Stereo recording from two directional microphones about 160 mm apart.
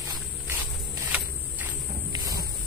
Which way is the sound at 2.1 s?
20° right (ahead or behind).